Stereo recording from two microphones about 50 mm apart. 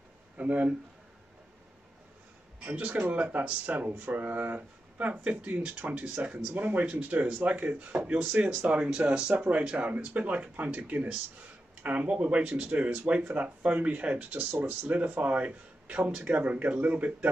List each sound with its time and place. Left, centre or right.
0.4 s speech: right
2.7 s speech: right
14.4 s speech: right
14.9 s speech: right